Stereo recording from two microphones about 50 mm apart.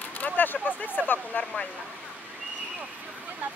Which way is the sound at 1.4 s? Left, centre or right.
Left.